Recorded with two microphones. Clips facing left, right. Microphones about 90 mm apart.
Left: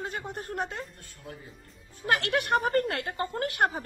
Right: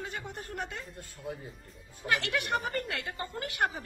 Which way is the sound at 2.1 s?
50° left (ahead or behind).